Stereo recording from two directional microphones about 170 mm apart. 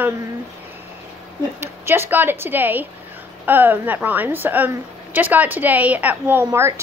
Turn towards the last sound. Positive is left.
turn(degrees=-15)  # may be behind; listen again after turning